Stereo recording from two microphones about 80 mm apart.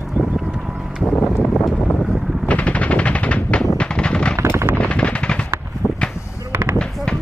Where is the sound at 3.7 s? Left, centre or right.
Centre.